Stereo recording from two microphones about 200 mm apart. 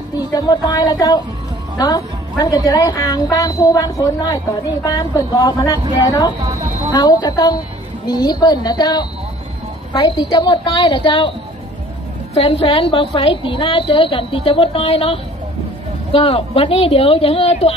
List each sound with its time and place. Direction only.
0.3 s a woman's voice: 20° left (ahead or behind)
12.4 s a woman's voice: 30° left (ahead or behind)